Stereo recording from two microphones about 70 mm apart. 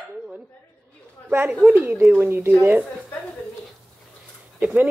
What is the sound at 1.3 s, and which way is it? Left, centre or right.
Speech, right.